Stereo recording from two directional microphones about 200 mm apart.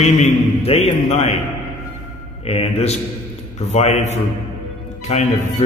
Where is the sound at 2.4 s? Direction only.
30° left (ahead or behind).